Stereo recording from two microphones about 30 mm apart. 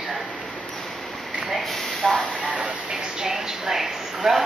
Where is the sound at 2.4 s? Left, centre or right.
Right.